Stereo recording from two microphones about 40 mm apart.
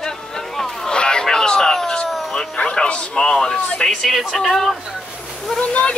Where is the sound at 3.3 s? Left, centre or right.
Centre.